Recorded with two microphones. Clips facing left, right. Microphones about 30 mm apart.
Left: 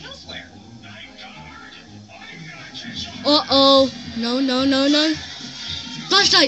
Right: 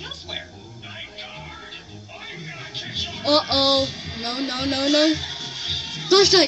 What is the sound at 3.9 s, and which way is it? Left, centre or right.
Speech, right.